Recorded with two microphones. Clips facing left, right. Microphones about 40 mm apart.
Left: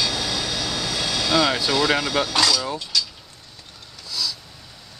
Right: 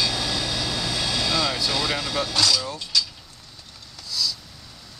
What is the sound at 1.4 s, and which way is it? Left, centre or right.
Vehicle, left.